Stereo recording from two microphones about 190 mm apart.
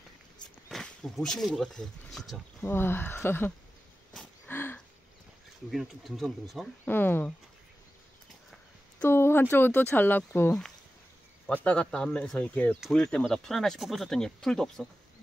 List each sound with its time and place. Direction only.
0.7 s speech: centre (ahead or behind)
4.1 s gasp: 5° left (ahead or behind)
5.7 s speech: centre (ahead or behind)
9.0 s speech: 10° left (ahead or behind)